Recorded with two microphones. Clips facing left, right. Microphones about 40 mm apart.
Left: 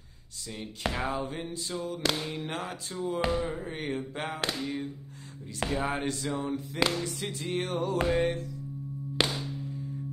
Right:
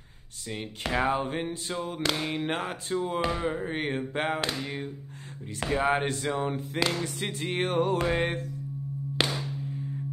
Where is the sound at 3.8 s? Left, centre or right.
Right.